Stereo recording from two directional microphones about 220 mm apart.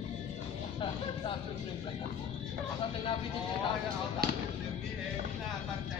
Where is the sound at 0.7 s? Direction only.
25° left (ahead or behind).